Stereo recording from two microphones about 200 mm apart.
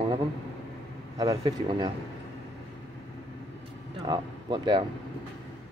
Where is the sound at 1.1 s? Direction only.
20° right (ahead or behind).